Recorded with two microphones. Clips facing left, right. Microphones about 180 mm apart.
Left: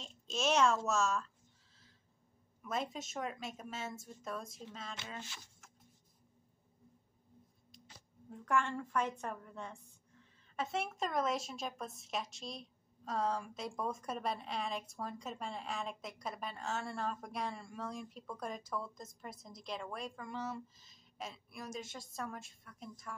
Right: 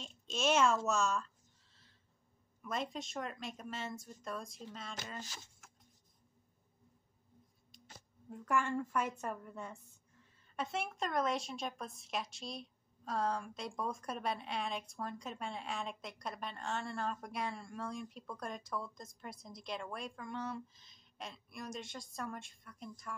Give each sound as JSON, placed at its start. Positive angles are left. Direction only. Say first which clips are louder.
{"t": 0.0, "sound": "speech", "louder": "right 1 dB", "side_deg": 0}
{"t": 2.6, "sound": "speech", "louder": "left 1 dB", "side_deg": 0}
{"t": 5.0, "sound": "speech", "louder": "right 2 dB", "side_deg": -40}
{"t": 8.3, "sound": "speech", "louder": "even", "side_deg": -5}